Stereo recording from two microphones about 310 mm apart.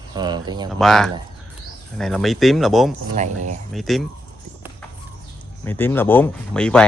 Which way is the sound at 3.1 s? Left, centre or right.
Right.